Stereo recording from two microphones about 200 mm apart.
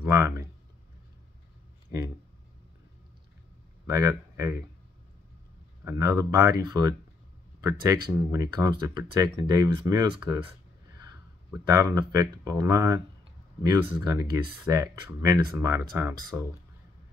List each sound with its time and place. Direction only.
0.0 s speech: 15° right (ahead or behind)
3.8 s speech: 15° right (ahead or behind)
5.9 s speech: 15° right (ahead or behind)
11.6 s speech: 15° right (ahead or behind)